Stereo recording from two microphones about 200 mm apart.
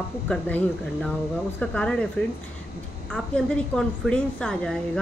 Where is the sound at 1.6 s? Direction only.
5° left (ahead or behind).